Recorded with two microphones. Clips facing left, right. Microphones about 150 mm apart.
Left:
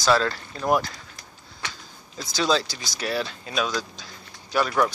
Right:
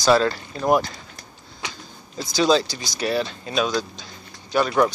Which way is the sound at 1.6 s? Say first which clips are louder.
Right 2 dB; 15° right (ahead or behind).